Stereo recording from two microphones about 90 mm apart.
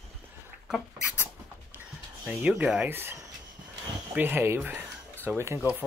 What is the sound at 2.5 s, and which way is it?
Speech, 15° right (ahead or behind).